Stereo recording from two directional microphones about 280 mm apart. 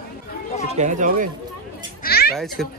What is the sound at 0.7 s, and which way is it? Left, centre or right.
Speech, right.